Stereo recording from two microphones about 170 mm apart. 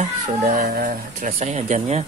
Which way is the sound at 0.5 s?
60° right (ahead or behind).